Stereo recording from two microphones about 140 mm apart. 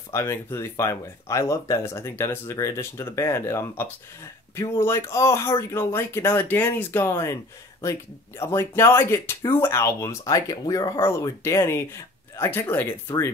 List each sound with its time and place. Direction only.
0.1 s speech: 20° left (ahead or behind)
8.4 s speech: 20° left (ahead or behind)